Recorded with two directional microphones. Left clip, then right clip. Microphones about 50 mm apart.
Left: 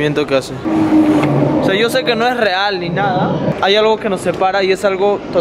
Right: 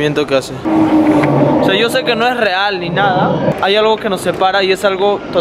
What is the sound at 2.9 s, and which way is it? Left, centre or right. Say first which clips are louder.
Speech: right 3 dB; centre.